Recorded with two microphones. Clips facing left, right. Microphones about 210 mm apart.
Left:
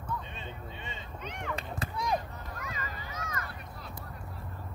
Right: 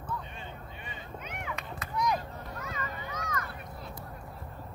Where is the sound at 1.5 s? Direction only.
30° left (ahead or behind).